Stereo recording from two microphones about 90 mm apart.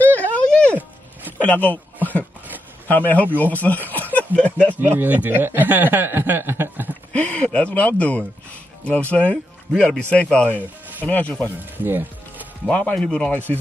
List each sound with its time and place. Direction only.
0.0 s a sound: 20° left (ahead or behind)
1.4 s speech: 15° left (ahead or behind)
2.9 s speech: 20° left (ahead or behind)
4.1 s a sound: 15° left (ahead or behind)
4.7 s speech: 20° right (ahead or behind)
7.1 s speech: 15° left (ahead or behind)
11.8 s speech: 25° right (ahead or behind)
12.6 s speech: 15° left (ahead or behind)